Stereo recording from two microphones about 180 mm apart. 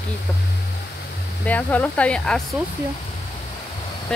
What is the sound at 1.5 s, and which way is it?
Speech, 10° left (ahead or behind).